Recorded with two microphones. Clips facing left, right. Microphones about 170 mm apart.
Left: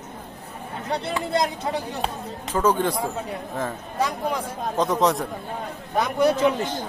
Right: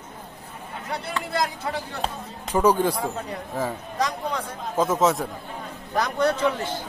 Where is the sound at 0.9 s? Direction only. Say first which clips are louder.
Left 5 dB; 25° left (ahead or behind).